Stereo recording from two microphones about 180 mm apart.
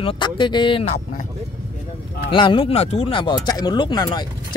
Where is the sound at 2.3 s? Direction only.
25° left (ahead or behind).